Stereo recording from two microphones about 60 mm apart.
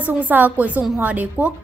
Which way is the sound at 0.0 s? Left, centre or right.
Right.